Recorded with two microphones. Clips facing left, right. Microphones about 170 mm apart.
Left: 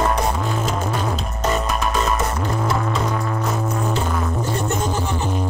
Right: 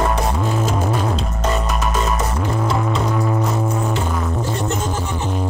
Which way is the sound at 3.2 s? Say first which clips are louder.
Right 4 dB; 15° right (ahead or behind).